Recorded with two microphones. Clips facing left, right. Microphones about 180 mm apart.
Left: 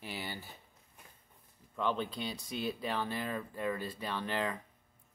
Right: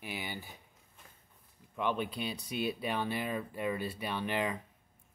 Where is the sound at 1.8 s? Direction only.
15° right (ahead or behind).